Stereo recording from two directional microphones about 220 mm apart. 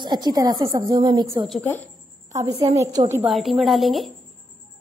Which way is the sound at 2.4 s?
30° right (ahead or behind).